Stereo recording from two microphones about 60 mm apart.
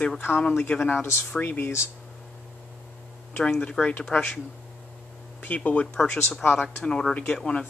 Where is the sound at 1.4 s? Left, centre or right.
Left.